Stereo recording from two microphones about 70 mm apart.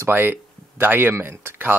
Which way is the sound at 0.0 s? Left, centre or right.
Right.